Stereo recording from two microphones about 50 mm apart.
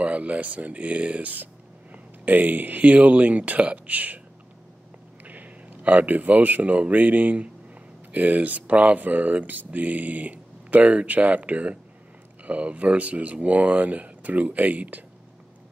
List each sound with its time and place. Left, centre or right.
0.0 s speech: right
5.2 s speech: right